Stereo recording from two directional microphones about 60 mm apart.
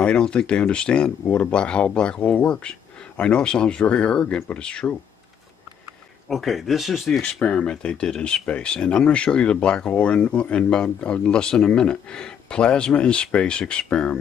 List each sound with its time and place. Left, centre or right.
0.0 s speech: centre
6.2 s speech: centre
7.2 s speech: centre